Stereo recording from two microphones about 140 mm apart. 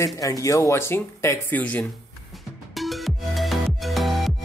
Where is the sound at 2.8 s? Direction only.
Centre (ahead or behind).